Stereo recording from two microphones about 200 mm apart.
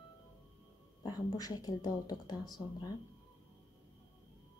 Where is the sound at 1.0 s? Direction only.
20° left (ahead or behind).